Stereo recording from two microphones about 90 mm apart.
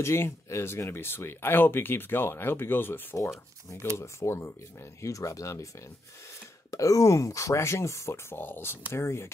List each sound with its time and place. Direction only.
0.0 s speech: 30° left (ahead or behind)
6.7 s speech: 35° left (ahead or behind)